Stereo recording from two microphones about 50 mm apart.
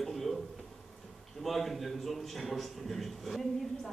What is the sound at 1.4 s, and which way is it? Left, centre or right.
A man's voice, centre.